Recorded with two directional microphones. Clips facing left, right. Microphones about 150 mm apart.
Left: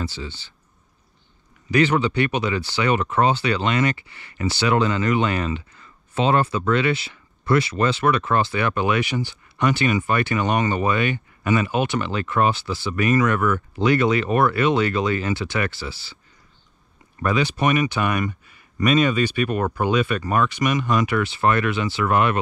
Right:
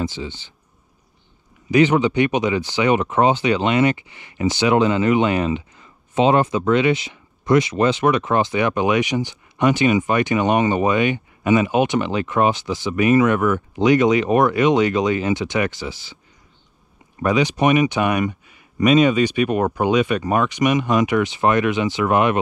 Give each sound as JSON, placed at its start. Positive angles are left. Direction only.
{"t": 0.0, "sound": "speech", "side_deg": -15}
{"t": 1.7, "sound": "speech", "side_deg": -15}
{"t": 17.2, "sound": "speech", "side_deg": -15}